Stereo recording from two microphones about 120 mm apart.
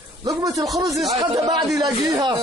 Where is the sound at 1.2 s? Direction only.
40° right (ahead or behind).